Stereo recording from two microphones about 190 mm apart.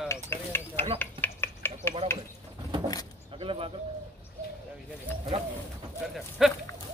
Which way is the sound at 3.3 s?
30° right (ahead or behind).